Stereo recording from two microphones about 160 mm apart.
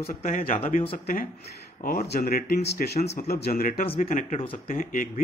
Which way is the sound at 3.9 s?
50° left (ahead or behind).